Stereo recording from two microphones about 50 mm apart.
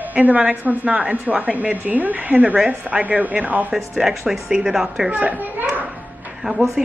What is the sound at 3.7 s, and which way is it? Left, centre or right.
Speech, centre.